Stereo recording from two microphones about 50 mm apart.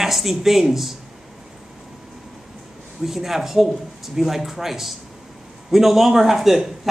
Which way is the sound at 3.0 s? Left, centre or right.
Centre.